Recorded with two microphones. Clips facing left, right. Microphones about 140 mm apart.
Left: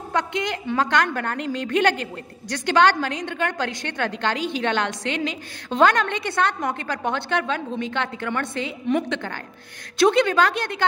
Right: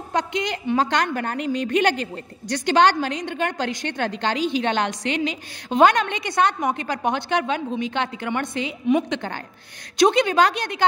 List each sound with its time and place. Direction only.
0.1 s a woman's voice: 20° right (ahead or behind)